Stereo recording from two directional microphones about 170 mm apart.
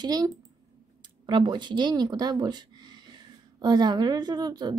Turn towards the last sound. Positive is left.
turn(degrees=-25)  # may be behind; listen again after turning